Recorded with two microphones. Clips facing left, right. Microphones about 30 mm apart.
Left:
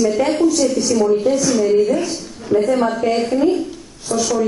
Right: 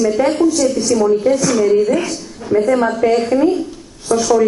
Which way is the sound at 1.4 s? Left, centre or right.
Right.